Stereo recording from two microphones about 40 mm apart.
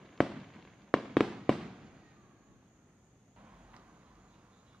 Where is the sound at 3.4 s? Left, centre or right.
Right.